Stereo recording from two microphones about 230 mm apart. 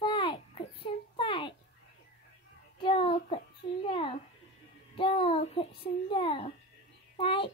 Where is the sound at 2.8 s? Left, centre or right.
Left.